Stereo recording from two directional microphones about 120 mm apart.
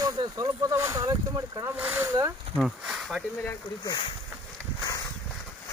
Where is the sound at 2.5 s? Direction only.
5° right (ahead or behind).